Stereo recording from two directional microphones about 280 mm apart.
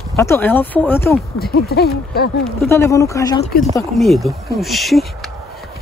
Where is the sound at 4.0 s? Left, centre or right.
Centre.